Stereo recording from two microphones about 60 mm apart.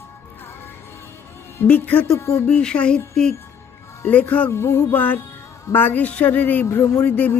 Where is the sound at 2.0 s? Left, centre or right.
Left.